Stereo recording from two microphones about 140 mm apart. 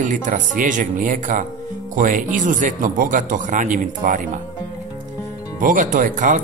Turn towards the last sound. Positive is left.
turn(degrees=-65)  # may be behind; listen again after turning